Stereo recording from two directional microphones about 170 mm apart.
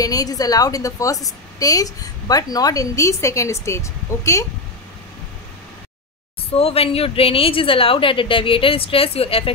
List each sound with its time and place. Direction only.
0.0 s a woman's voice: 20° left (ahead or behind)
6.5 s a woman's voice: 35° left (ahead or behind)